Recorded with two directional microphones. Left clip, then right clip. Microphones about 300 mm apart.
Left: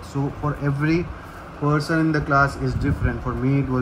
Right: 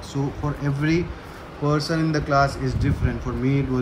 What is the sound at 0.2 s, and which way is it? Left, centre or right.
Speech, centre.